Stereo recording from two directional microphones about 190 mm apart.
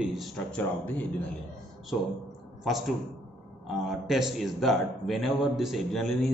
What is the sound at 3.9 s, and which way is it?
A man's voice, centre (ahead or behind).